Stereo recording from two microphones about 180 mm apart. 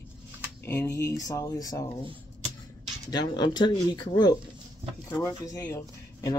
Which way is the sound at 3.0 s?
25° left (ahead or behind).